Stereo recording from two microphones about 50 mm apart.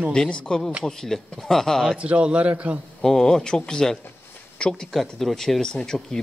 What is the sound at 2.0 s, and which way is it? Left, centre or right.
Speech, right.